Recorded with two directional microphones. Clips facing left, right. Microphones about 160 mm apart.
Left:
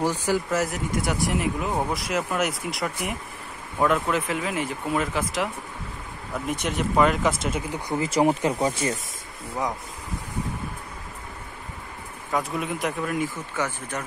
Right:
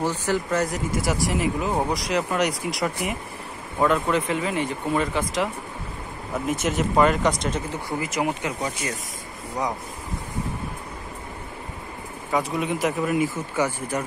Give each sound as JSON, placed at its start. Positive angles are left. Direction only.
{"t": 0.0, "sound": "speech", "side_deg": 10}
{"t": 8.0, "sound": "speech", "side_deg": 35}
{"t": 12.3, "sound": "speech", "side_deg": 0}